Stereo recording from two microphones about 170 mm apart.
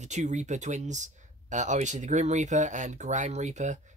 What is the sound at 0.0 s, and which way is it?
Speech, 45° right (ahead or behind).